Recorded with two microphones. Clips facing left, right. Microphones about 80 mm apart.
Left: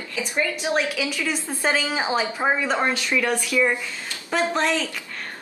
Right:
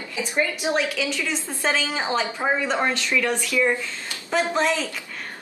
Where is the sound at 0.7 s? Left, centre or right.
Centre.